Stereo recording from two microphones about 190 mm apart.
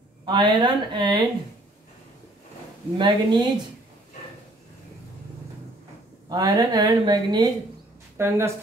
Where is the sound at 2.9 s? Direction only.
25° right (ahead or behind).